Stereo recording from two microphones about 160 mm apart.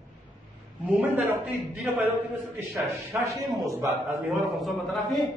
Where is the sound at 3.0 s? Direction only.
20° right (ahead or behind).